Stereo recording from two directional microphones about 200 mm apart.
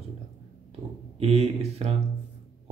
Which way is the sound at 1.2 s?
30° right (ahead or behind).